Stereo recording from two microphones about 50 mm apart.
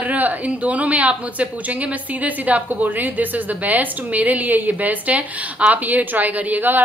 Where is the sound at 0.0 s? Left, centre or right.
Right.